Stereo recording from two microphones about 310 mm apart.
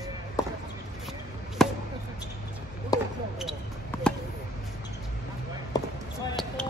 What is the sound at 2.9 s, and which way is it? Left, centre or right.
Basketball bounce, centre.